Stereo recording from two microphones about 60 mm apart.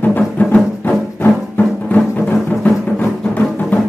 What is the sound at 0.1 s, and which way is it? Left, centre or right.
Music, left.